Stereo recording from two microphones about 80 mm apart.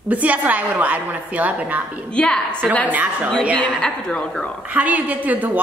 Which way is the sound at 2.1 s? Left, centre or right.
Centre.